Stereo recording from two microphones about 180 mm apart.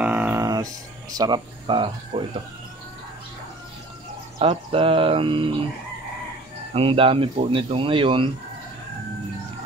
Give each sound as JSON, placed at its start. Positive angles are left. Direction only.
{"t": 0.0, "sound": "a sound", "side_deg": -5}
{"t": 4.4, "sound": "speech", "side_deg": -30}
{"t": 6.7, "sound": "speech", "side_deg": -30}